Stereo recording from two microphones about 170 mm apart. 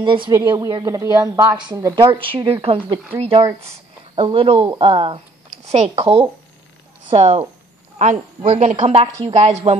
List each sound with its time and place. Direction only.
0.0 s a woman's voice: 30° right (ahead or behind)